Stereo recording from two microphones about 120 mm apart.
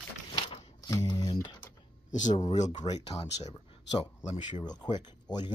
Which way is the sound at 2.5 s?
75° left (ahead or behind).